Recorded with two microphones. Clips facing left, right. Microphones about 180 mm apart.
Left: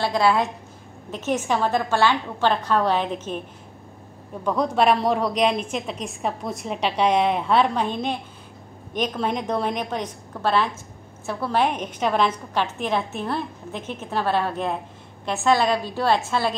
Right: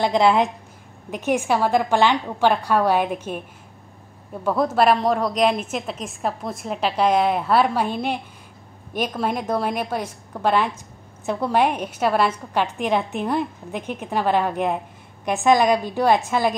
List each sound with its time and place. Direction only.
0.0 s a woman's voice: 20° right (ahead or behind)
4.5 s a woman's voice: 5° right (ahead or behind)